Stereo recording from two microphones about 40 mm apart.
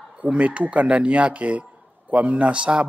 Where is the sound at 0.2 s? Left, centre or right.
Right.